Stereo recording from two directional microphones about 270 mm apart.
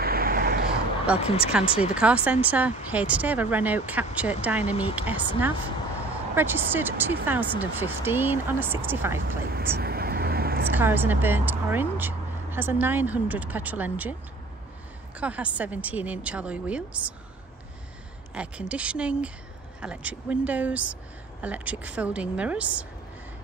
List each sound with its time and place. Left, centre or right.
0.0 s a sound: right
1.1 s speech: left
2.0 s speech: centre
6.3 s speech: centre
9.6 s vehicle: right
10.7 s speech: centre
15.1 s speech: centre
18.3 s speech: centre